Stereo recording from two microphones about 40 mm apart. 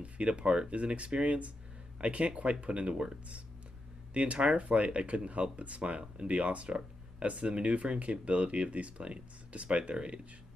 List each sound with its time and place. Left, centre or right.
0.0 s speech: right
4.1 s speech: right